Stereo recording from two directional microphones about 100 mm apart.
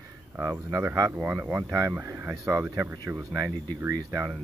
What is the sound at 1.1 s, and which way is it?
Speech, 15° right (ahead or behind).